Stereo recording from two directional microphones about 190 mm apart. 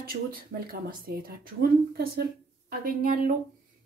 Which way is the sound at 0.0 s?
50° right (ahead or behind).